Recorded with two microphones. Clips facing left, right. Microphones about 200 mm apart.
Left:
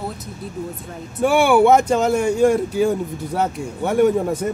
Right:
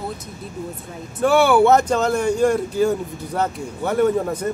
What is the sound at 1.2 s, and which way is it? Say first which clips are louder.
Speech: even; 15° left (ahead or behind).